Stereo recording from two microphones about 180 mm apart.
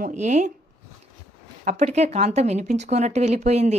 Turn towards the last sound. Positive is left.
turn(degrees=-35)  # may be behind; listen again after turning